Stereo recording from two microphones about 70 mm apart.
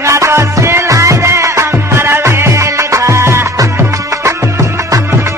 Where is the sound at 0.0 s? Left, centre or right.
Right.